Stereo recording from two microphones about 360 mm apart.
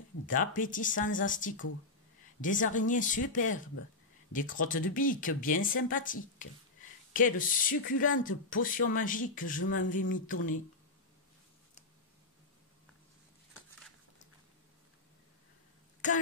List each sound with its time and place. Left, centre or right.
0.3 s speech: left
7.2 s speech: left